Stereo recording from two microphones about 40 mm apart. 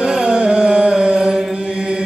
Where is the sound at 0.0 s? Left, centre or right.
Centre.